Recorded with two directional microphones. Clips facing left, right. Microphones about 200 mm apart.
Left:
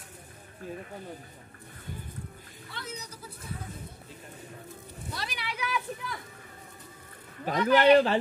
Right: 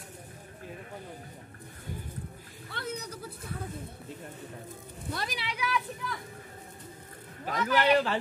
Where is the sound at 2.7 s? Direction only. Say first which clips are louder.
Right 5 dB; 55° right (ahead or behind).